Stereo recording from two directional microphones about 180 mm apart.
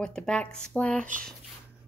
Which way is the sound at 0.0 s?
5° left (ahead or behind).